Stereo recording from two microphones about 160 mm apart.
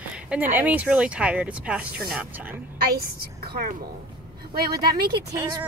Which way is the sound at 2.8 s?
75° right (ahead or behind).